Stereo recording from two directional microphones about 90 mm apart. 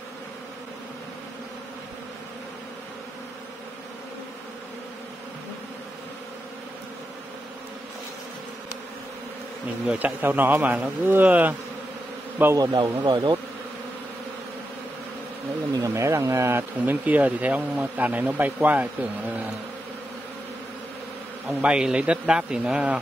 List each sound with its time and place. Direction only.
9.8 s speech: 20° right (ahead or behind)
12.7 s speech: 55° right (ahead or behind)
15.9 s speech: 30° right (ahead or behind)
17.0 s speech: 15° right (ahead or behind)
21.5 s speech: 10° right (ahead or behind)